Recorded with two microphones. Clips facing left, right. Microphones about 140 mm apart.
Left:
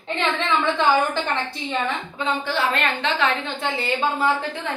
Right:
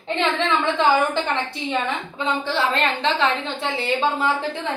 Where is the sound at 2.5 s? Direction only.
25° right (ahead or behind).